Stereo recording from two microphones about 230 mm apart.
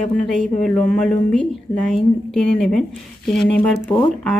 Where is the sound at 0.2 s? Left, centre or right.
Centre.